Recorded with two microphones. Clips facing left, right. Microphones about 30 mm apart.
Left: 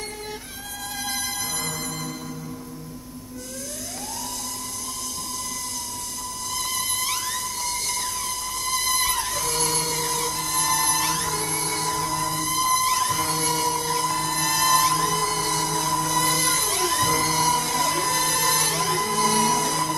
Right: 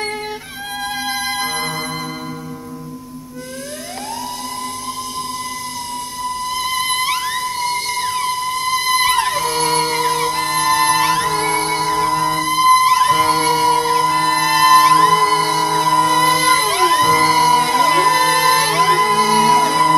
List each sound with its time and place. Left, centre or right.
1.0 s music: right
6.2 s music: right
9.1 s music: right
9.4 s music: right
15.9 s music: right
16.2 s music: right